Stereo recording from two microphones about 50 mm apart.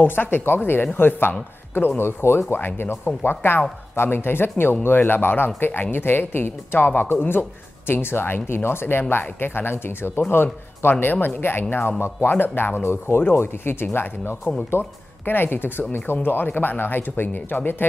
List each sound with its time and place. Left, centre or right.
0.0 s speech: left
2.0 s speech: left